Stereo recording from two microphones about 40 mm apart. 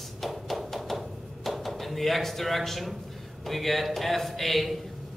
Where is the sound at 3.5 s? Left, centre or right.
Centre.